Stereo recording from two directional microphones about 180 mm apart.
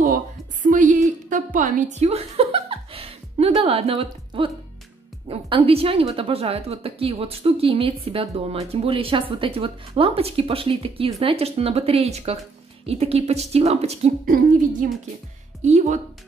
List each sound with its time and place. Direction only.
0.0 s a sound: 50° right (ahead or behind); by 4.5 s 30° right (ahead or behind)
5.3 s speech: 35° right (ahead or behind)
15.6 s speech: 40° right (ahead or behind)